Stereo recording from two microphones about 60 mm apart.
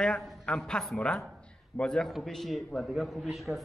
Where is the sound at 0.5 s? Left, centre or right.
Centre.